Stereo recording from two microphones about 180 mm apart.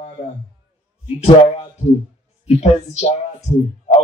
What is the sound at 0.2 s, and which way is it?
Speech, 35° left (ahead or behind).